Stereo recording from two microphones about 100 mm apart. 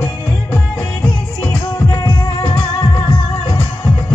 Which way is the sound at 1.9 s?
40° left (ahead or behind).